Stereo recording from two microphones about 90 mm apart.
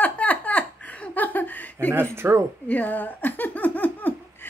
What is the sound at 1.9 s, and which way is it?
Speech, 25° right (ahead or behind).